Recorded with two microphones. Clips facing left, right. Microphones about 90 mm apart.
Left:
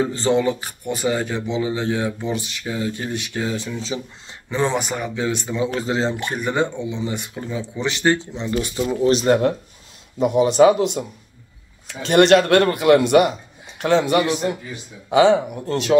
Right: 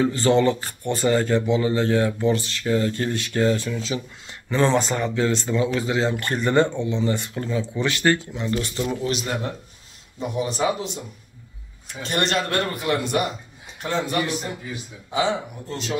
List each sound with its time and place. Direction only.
0.0 s speech: 25° left (ahead or behind)
0.4 s speech: 10° left (ahead or behind)
5.8 s speech: 30° left (ahead or behind)
9.0 s speech: 35° left (ahead or behind)
10.1 s speech: 90° left
11.9 s speech: 90° left; by 16.0 s 70° left (ahead or behind)